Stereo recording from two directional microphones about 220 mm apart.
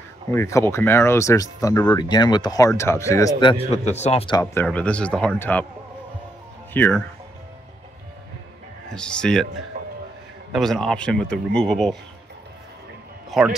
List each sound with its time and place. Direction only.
0.3 s speech: 15° left (ahead or behind); by 4.4 s 30° left (ahead or behind)
4.6 s speech: 5° left (ahead or behind)
6.7 s speech: 10° left (ahead or behind)
8.9 s speech: 5° left (ahead or behind)
10.5 s speech: centre (ahead or behind)
13.3 s speech: 5° right (ahead or behind)